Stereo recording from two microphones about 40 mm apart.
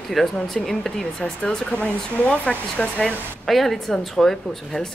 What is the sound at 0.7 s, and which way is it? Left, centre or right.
A woman's voice, centre.